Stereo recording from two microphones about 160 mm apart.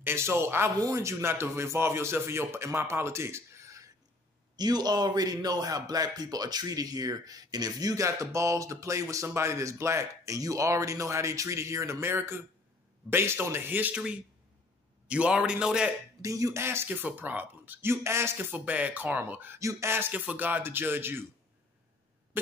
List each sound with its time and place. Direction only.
0.0 s a man's voice: 15° right (ahead or behind)
16.2 s speech: 20° right (ahead or behind)